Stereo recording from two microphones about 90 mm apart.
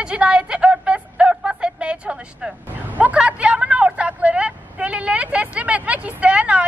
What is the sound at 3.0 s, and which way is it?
Vehicle, 15° right (ahead or behind).